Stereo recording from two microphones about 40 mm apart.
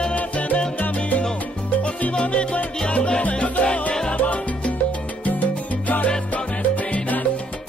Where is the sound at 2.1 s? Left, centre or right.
Left.